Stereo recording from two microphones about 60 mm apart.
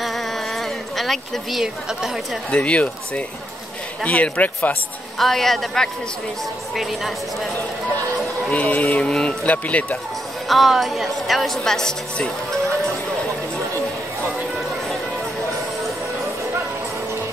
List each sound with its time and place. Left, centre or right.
0.0 s a sound: centre
1.6 s a woman's voice: centre
2.5 s speech: left
5.2 s a woman's voice: centre
8.5 s speech: left
9.1 s speech: centre
9.5 s speech: left
10.5 s a woman's voice: centre